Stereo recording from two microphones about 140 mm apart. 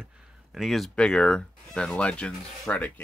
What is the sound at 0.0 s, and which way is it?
Speech, 5° right (ahead or behind).